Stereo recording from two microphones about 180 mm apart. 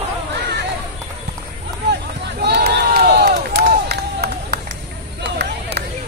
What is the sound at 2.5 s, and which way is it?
Crowd, 65° right (ahead or behind).